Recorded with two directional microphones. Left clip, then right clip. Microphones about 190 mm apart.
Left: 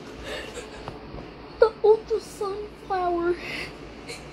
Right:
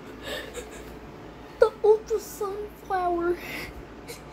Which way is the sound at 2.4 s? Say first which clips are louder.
Left 1 dB; centre (ahead or behind).